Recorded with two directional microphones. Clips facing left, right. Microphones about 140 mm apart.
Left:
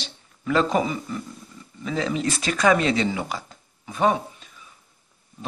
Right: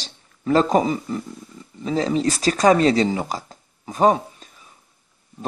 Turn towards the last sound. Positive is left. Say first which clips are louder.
# right 4 dB
turn(degrees=-40)  # may be behind; listen again after turning